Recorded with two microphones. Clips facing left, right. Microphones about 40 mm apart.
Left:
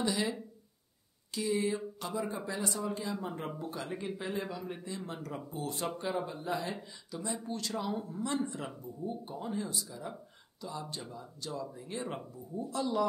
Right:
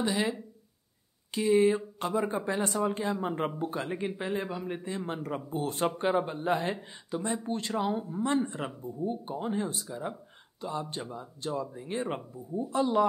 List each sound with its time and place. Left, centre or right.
0.0 s speech: right